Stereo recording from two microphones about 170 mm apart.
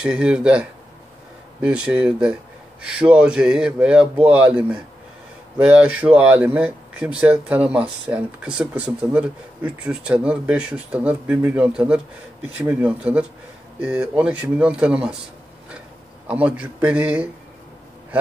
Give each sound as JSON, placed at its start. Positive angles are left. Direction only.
{"t": 0.0, "sound": "speech", "side_deg": -5}
{"t": 5.6, "sound": "speech", "side_deg": -5}
{"t": 16.3, "sound": "speech", "side_deg": -5}